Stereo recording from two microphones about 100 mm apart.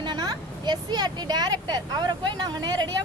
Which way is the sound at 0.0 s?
45° right (ahead or behind).